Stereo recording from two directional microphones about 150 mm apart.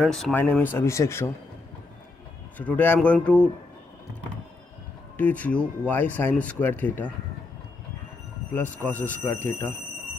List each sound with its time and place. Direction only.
0.0 s speech: centre (ahead or behind)
0.4 s speech: 15° left (ahead or behind)
2.5 s speech: 10° left (ahead or behind)
5.1 s speech: 10° left (ahead or behind)
8.5 s speech: 10° left (ahead or behind)